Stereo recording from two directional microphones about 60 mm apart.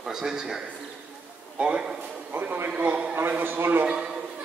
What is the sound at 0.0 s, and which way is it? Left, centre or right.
Speech, centre.